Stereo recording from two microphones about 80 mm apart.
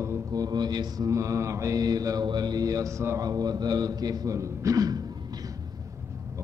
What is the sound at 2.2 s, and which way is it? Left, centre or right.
Speech, right.